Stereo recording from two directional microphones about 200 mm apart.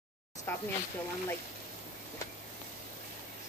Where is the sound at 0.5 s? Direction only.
10° left (ahead or behind).